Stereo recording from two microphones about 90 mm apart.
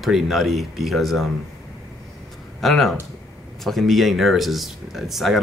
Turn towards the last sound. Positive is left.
turn(degrees=0)  # may be behind; listen again after turning